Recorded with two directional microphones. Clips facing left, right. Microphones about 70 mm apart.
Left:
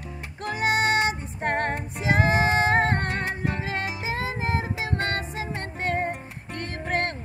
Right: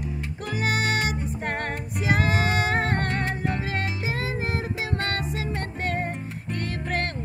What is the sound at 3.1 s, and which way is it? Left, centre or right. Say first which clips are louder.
Music: right 1 dB; centre.